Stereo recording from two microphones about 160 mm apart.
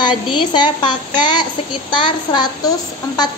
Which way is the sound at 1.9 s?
30° left (ahead or behind).